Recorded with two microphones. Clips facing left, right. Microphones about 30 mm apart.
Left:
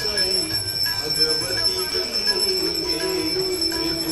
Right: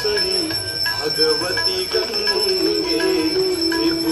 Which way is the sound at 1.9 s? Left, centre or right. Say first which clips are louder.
Right 4 dB; centre.